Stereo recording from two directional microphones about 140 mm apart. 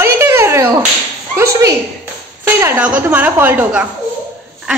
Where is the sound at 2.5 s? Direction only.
20° right (ahead or behind).